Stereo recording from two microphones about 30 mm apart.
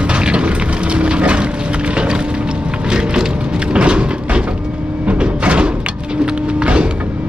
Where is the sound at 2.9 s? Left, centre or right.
Right.